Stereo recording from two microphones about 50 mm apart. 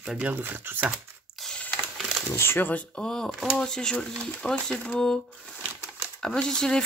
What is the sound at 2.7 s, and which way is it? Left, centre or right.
Speech, left.